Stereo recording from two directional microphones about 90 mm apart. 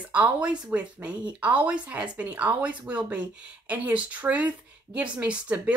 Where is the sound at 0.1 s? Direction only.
15° right (ahead or behind).